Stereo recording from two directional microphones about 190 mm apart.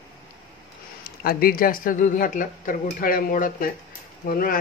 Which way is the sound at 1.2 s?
50° left (ahead or behind).